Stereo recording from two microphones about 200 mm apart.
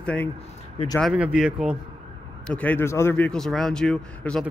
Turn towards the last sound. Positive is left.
turn(degrees=5)  # may be behind; listen again after turning